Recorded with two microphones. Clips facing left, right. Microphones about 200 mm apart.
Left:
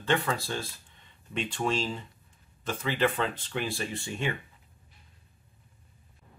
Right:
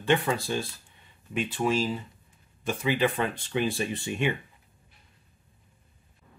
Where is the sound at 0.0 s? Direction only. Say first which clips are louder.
Right 3 dB; 15° right (ahead or behind).